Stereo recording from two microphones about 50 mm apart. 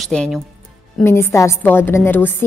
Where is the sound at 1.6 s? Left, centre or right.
Left.